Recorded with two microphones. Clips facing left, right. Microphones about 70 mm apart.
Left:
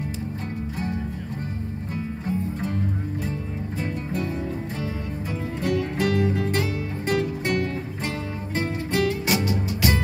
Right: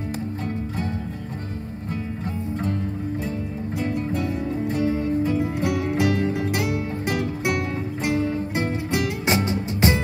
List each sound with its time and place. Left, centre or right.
4.8 s music: right
5.4 s music: right
6.1 s music: right
7.4 s music: centre